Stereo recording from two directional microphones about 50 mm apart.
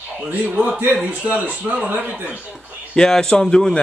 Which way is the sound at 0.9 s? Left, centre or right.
Right.